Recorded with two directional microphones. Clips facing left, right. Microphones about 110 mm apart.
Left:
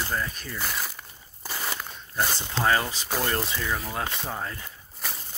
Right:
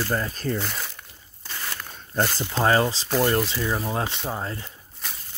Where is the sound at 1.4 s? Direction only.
15° left (ahead or behind).